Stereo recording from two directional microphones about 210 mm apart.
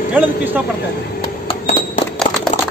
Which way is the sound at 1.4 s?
35° left (ahead or behind).